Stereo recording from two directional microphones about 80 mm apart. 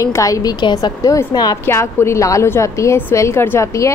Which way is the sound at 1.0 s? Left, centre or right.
Left.